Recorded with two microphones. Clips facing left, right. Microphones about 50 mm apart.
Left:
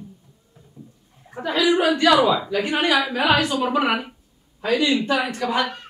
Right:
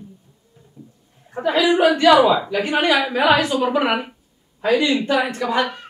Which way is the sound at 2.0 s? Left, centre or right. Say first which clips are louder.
Right 4 dB; centre.